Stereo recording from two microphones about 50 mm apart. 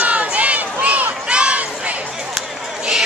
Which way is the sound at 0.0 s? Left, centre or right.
Right.